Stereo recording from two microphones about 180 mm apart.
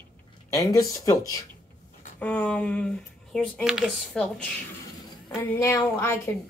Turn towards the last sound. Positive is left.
turn(degrees=15)  # may be behind; listen again after turning